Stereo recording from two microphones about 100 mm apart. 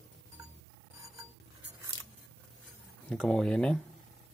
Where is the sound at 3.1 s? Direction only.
5° left (ahead or behind).